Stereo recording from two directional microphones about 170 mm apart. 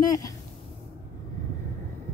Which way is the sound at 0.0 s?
20° left (ahead or behind).